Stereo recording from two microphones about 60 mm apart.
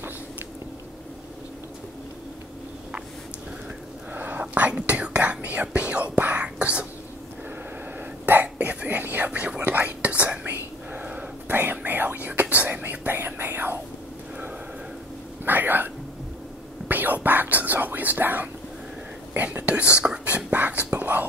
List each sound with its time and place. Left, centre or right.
4.1 s whispering: right
8.3 s whispering: right
10.4 s whispering: right
11.0 s a sound: right
11.5 s whispering: right
15.4 s a sound: right
16.8 s whispering: right